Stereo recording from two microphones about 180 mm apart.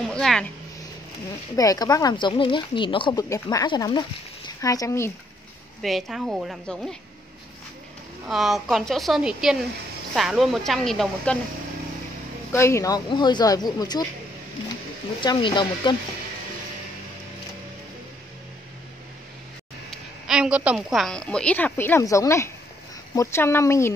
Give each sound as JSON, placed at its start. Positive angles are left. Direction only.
{"t": 0.1, "sound": "speech", "side_deg": 5}
{"t": 1.6, "sound": "speech", "side_deg": 20}
{"t": 5.8, "sound": "a woman's voice", "side_deg": 0}
{"t": 8.3, "sound": "a woman's voice", "side_deg": 0}
{"t": 12.5, "sound": "speech", "side_deg": 15}
{"t": 15.1, "sound": "speech", "side_deg": 25}
{"t": 19.9, "sound": "a woman's voice", "side_deg": -5}